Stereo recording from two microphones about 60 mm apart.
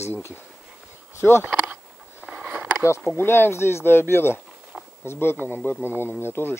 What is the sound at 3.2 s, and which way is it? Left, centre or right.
Speech, left.